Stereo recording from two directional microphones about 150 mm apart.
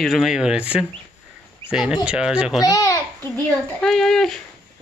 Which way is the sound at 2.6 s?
25° left (ahead or behind).